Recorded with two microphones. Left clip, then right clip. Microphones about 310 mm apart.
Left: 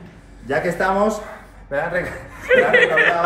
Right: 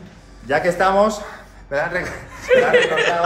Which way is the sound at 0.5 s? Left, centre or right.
Centre.